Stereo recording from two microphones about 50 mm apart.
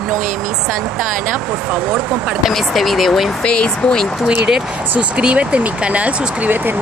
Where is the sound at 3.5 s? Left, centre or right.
Centre.